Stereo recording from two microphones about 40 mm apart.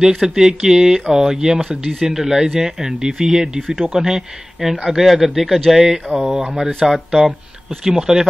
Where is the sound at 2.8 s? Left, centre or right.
Right.